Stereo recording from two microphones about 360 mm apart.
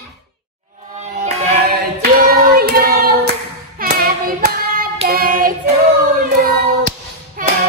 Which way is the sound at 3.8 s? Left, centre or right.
Right.